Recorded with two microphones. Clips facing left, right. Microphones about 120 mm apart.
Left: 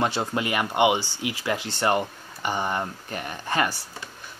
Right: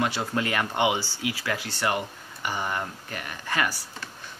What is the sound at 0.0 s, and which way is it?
Speech, 25° left (ahead or behind).